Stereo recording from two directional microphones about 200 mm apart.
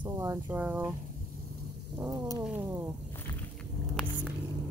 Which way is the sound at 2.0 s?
15° right (ahead or behind).